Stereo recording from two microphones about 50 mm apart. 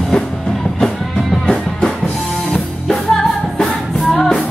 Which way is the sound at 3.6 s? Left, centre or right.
Centre.